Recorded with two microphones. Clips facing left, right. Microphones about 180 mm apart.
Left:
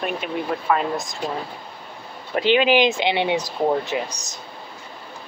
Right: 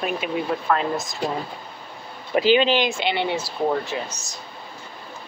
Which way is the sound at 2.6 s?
15° left (ahead or behind).